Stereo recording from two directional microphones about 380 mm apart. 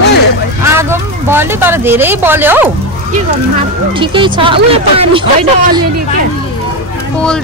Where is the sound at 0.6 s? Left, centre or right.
Centre.